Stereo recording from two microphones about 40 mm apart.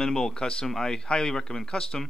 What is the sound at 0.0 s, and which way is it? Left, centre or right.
Speech, centre.